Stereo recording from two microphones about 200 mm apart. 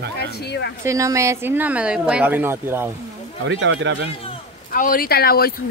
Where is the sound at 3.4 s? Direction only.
65° right (ahead or behind).